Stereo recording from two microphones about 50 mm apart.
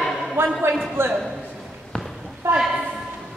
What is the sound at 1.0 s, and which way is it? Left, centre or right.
Speech, right.